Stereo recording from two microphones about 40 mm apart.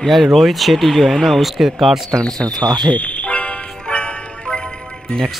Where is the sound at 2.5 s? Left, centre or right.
Left.